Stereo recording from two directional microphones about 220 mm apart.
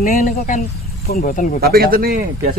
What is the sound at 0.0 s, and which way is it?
Speech, 40° left (ahead or behind).